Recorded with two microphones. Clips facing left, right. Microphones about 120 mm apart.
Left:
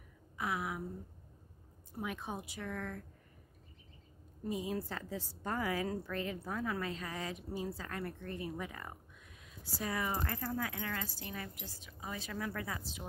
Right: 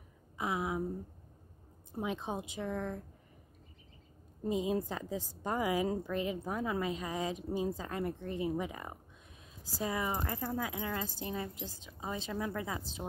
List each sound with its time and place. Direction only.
0.4 s a sound: 20° right (ahead or behind)
1.9 s a woman's voice: 20° right (ahead or behind)
4.5 s a woman's voice: 20° right (ahead or behind)